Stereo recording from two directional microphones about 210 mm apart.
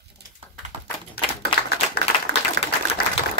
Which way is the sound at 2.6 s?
55° right (ahead or behind).